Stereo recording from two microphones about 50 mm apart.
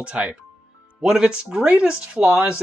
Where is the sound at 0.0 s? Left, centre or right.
Right.